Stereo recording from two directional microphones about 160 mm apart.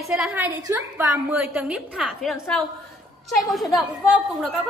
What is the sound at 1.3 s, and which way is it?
A woman's voice, 5° right (ahead or behind).